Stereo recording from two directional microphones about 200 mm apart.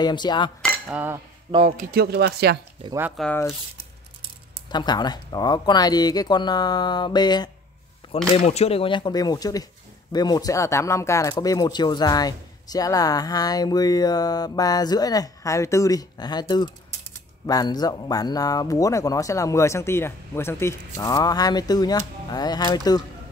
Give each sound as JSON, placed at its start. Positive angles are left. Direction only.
{"t": 0.0, "sound": "speech", "side_deg": 20}
{"t": 0.6, "sound": "cutlery", "side_deg": 5}
{"t": 0.9, "sound": "cutlery", "side_deg": -10}
{"t": 1.5, "sound": "a man's voice", "side_deg": -30}
{"t": 1.9, "sound": "speech", "side_deg": -55}
{"t": 3.2, "sound": "a man's voice", "side_deg": 10}
{"t": 4.6, "sound": "speech", "side_deg": 20}
{"t": 8.0, "sound": "a sound", "side_deg": 25}
{"t": 8.5, "sound": "a man's voice", "side_deg": 30}